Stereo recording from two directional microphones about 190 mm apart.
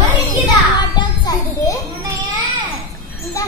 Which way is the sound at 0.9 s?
20° left (ahead or behind).